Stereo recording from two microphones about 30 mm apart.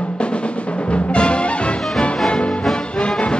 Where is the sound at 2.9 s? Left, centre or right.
Left.